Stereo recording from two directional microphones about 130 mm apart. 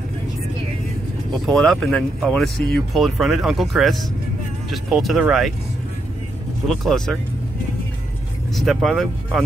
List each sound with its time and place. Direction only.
1.3 s speech: 5° left (ahead or behind)
6.7 s speech: centre (ahead or behind)
8.5 s speech: centre (ahead or behind)